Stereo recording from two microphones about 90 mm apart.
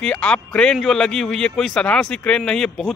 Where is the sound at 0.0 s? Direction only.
10° left (ahead or behind).